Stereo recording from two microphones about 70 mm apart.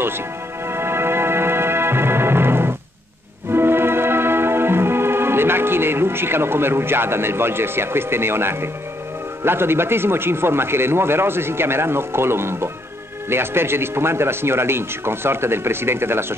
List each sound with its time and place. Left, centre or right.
0.7 s music: right
9.4 s a man's voice: right